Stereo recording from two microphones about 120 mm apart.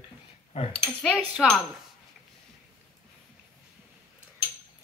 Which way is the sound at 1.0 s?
Centre (ahead or behind).